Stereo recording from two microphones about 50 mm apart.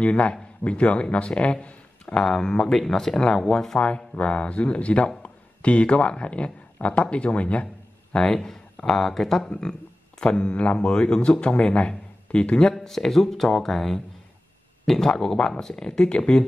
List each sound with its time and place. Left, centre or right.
0.0 s speech: left
8.1 s speech: centre
12.7 s speech: centre